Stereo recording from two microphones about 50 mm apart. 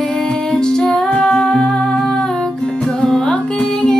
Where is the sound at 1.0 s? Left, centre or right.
Centre.